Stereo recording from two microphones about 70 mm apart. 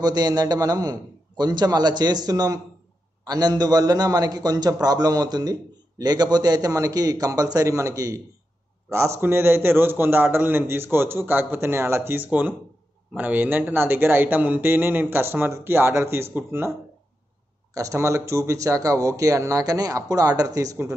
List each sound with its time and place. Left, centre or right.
0.0 s a man's voice: right
8.9 s a man's voice: right
17.7 s speech: right